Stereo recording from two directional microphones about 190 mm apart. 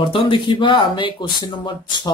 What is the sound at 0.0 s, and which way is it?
Speech, 25° left (ahead or behind).